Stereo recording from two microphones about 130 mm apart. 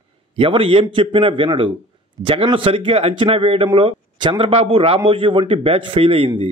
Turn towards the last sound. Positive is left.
turn(degrees=-45)  # may be behind; listen again after turning